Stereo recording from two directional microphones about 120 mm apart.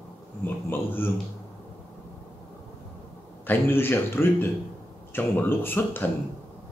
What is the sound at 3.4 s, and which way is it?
A man's voice, 20° left (ahead or behind).